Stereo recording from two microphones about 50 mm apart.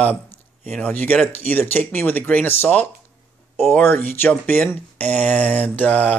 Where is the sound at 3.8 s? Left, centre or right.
Left.